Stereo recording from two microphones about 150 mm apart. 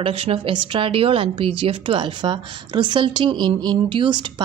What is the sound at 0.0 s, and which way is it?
A woman's voice, 35° right (ahead or behind).